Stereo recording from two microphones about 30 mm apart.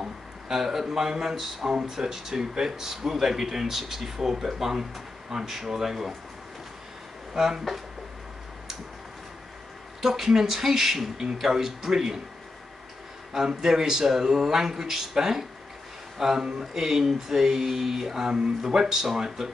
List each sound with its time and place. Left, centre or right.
0.0 s speech: centre
7.3 s speech: right
10.0 s speech: centre
13.5 s speech: centre
16.3 s speech: right
16.7 s speech: centre